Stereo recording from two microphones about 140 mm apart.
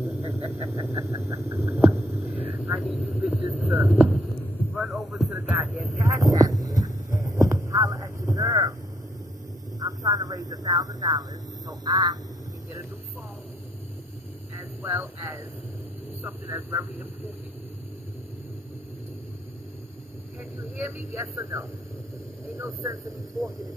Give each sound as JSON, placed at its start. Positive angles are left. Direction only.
{"t": 0.0, "sound": "a sound", "side_deg": -15}
{"t": 2.4, "sound": "vehicle", "side_deg": -10}
{"t": 2.9, "sound": "speech", "side_deg": 0}
{"t": 5.9, "sound": "heart sounds", "side_deg": -25}
{"t": 9.8, "sound": "speech", "side_deg": -25}
{"t": 14.6, "sound": "speech", "side_deg": -15}
{"t": 20.7, "sound": "speech", "side_deg": -15}